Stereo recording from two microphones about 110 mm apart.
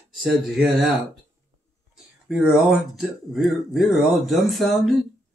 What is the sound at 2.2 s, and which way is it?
Speech, 5° right (ahead or behind).